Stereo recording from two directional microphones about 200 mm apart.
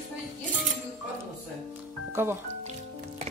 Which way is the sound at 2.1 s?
10° right (ahead or behind).